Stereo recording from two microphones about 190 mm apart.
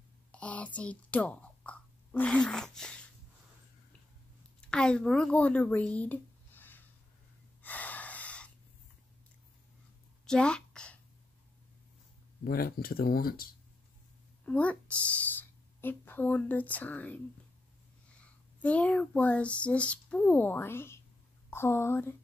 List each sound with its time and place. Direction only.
0.3 s a sound: 5° left (ahead or behind)
4.6 s speech: 5° left (ahead or behind)
7.6 s wheeze: 10° left (ahead or behind)
10.2 s a sound: 5° left (ahead or behind)
12.4 s speech: 50° left (ahead or behind)
14.4 s speech: 5° left (ahead or behind)
18.2 s speech: 5° left (ahead or behind)